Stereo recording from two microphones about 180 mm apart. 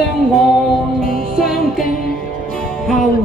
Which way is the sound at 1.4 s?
Centre (ahead or behind).